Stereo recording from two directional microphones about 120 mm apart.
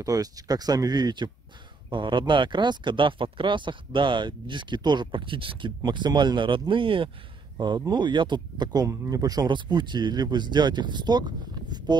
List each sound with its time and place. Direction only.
0.0 s speech: 30° right (ahead or behind); by 7.1 s 45° right (ahead or behind)
7.5 s speech: 35° right (ahead or behind)